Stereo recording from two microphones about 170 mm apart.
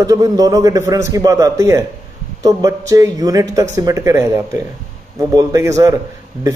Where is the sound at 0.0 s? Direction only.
20° right (ahead or behind).